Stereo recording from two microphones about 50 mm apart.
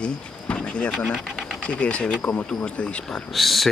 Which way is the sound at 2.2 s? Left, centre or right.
Left.